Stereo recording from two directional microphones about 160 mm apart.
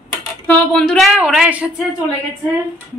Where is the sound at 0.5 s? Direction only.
5° left (ahead or behind).